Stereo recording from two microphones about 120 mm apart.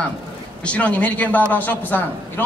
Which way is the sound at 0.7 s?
10° left (ahead or behind).